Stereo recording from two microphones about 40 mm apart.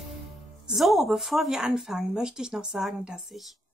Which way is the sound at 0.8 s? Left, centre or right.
Centre.